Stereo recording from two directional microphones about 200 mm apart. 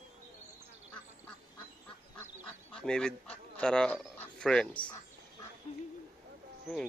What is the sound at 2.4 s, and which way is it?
Goose, 5° left (ahead or behind).